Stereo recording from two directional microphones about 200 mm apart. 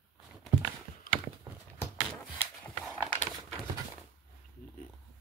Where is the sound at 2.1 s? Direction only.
5° left (ahead or behind).